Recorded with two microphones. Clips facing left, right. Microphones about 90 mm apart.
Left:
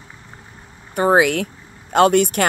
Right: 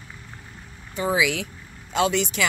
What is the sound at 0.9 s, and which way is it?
Speech, 60° left (ahead or behind).